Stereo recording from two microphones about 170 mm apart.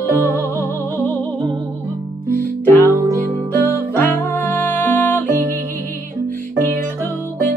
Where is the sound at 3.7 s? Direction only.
10° left (ahead or behind).